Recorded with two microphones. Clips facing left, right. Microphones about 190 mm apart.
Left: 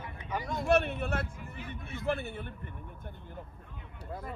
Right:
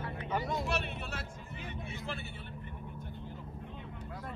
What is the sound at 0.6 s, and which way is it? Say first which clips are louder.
Speech: left 9 dB; 50° left (ahead or behind).